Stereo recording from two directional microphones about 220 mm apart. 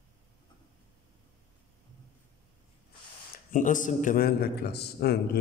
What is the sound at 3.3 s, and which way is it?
A man's voice, 35° left (ahead or behind).